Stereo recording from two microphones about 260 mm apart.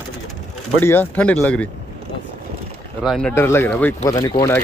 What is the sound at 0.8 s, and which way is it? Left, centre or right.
Speech, centre.